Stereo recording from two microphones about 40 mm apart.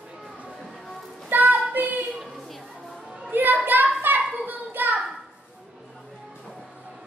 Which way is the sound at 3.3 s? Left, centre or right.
Right.